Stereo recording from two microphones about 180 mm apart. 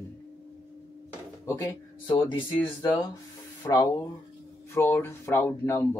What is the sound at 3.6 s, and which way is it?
Speech, 20° left (ahead or behind).